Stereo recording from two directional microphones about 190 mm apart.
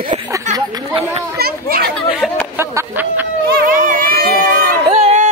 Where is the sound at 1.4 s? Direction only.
55° right (ahead or behind).